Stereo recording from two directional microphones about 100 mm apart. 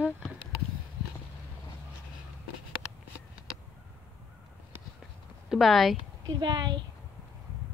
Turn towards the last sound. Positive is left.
turn(degrees=-50)  # may be behind; listen again after turning